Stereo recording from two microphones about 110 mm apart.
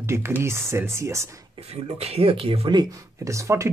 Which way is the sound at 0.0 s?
25° right (ahead or behind).